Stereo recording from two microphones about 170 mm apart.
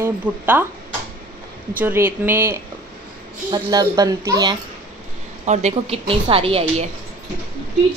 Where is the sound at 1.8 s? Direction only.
10° right (ahead or behind).